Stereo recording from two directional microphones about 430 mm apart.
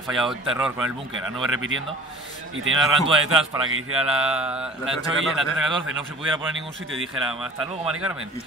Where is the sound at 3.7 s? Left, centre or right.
Right.